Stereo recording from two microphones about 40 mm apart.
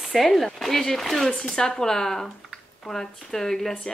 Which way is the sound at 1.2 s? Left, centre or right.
Centre.